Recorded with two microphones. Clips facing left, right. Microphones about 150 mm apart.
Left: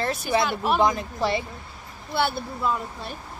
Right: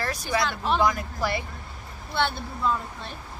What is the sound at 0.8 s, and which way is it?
Speech, 25° left (ahead or behind).